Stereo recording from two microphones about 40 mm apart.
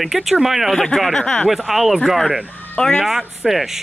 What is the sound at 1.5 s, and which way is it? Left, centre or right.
Speech, centre.